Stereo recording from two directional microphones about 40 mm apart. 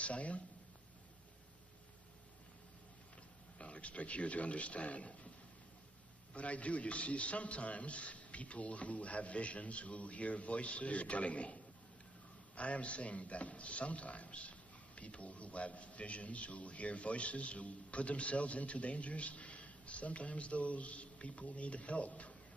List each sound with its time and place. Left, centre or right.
0.0 s a man's voice: left
3.5 s a man's voice: left
6.3 s a man's voice: left